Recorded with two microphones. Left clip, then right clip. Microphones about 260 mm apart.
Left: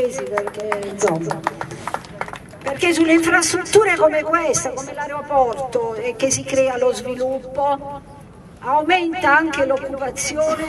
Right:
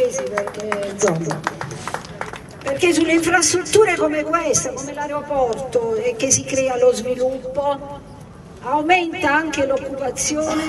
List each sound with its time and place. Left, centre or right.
0.1 s speech: left
2.7 s a man's voice: centre
8.8 s a man's voice: centre